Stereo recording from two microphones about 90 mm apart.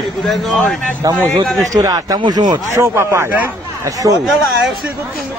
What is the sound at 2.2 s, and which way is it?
Speech, 55° right (ahead or behind).